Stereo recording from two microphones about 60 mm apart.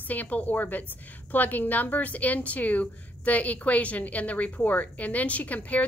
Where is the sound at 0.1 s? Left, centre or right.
Left.